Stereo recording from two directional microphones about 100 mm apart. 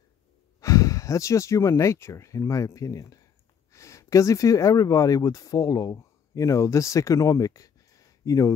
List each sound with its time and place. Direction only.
0.6 s speech: 35° left (ahead or behind)